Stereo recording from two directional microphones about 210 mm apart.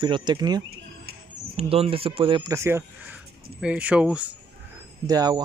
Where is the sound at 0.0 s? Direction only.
20° right (ahead or behind); by 4.2 s 5° right (ahead or behind).